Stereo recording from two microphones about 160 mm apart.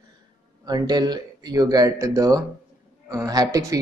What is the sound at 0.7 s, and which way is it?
Speech, 25° right (ahead or behind).